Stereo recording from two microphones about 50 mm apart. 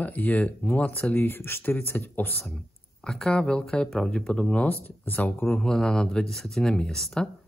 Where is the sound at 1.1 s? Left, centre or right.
Left.